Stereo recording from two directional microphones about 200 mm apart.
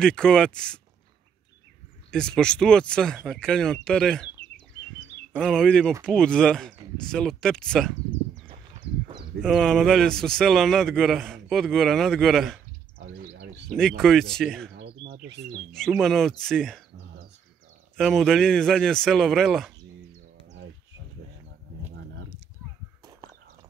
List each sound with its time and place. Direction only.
0.0 s speech: 5° left (ahead or behind)
2.0 s speech: 5° left (ahead or behind)
5.3 s speech: 5° left (ahead or behind)
8.5 s a sound: 25° right (ahead or behind)
9.4 s speech: 5° left (ahead or behind)
13.7 s speech: 5° left (ahead or behind)
15.7 s speech: centre (ahead or behind)
17.9 s speech: centre (ahead or behind)